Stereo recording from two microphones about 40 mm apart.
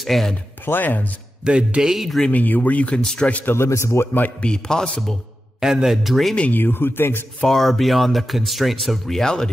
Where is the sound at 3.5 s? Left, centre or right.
Left.